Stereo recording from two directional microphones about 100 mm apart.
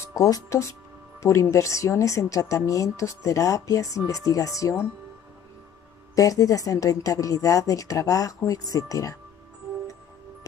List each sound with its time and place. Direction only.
0.0 s speech: 35° left (ahead or behind)
6.1 s speech: 35° left (ahead or behind)